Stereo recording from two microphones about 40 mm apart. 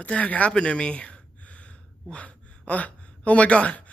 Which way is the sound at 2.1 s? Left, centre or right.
Left.